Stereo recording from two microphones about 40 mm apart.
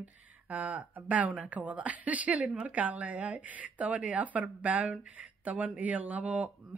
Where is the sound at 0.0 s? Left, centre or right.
Right.